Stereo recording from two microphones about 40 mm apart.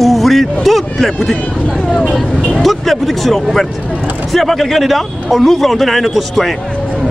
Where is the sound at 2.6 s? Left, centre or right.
Centre.